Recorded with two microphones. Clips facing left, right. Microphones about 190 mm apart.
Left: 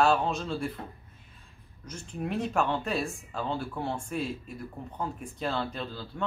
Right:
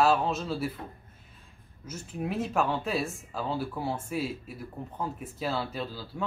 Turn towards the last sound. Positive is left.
turn(degrees=-5)  # may be behind; listen again after turning